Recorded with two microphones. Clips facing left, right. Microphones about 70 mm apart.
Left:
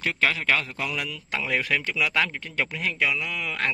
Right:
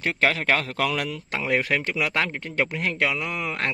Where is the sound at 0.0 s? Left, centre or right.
Right.